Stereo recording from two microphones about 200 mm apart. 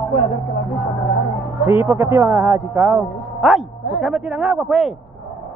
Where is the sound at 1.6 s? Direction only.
10° right (ahead or behind).